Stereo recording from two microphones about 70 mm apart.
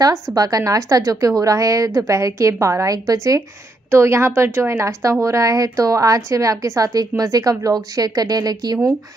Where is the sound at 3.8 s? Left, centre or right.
Right.